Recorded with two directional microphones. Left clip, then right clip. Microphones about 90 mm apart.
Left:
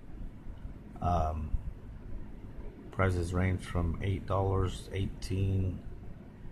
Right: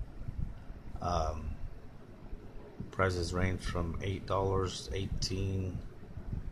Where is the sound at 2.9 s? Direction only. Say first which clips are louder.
Even; 20° left (ahead or behind).